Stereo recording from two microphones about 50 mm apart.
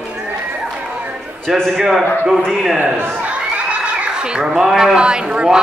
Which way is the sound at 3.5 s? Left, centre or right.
Right.